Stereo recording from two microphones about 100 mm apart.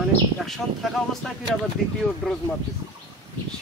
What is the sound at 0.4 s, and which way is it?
Speech, centre (ahead or behind).